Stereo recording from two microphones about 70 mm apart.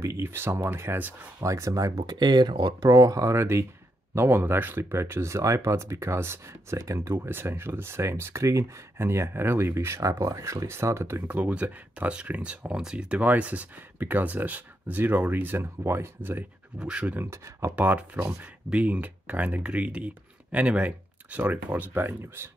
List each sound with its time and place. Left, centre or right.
0.2 s speech: right
1.4 s speech: right
2.8 s speech: right
11.2 s speech: centre
16.8 s speech: centre
17.2 s speech: right
17.7 s speech: right